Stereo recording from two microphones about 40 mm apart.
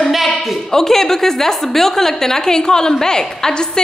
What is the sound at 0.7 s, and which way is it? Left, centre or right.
A woman's voice, centre.